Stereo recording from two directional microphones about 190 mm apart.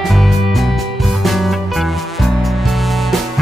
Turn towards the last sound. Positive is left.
turn(degrees=0)  # may be behind; listen again after turning